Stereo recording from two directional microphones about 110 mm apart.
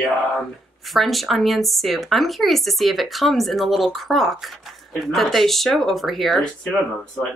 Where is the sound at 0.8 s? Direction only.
Centre (ahead or behind).